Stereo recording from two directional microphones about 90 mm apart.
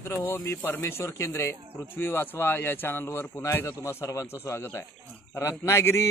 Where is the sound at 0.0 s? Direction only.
25° left (ahead or behind).